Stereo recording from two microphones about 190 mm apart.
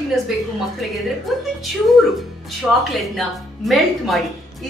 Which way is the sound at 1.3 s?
Centre (ahead or behind).